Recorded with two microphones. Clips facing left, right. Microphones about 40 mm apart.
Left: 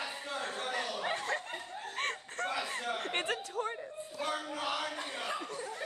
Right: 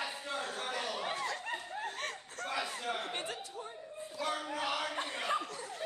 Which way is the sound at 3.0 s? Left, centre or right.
Left.